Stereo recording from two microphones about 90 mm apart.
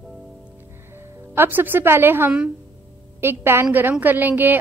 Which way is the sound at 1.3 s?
25° right (ahead or behind).